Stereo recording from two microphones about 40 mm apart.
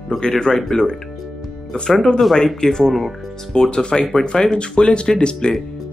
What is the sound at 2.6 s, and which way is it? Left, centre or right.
Speech, centre.